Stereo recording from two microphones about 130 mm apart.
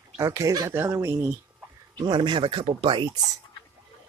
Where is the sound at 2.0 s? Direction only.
35° right (ahead or behind).